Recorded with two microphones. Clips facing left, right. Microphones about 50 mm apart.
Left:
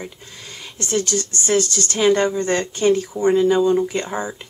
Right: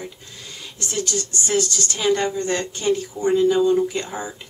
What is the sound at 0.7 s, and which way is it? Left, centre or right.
Speech, left.